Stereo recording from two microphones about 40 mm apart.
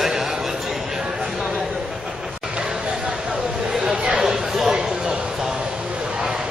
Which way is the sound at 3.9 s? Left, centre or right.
Centre.